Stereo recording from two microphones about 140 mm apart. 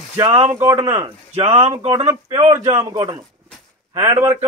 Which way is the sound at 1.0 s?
45° right (ahead or behind).